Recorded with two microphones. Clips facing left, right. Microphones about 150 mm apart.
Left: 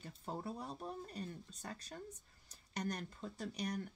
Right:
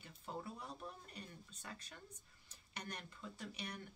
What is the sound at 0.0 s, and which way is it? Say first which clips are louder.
Speech: left 4 dB; 40° left (ahead or behind).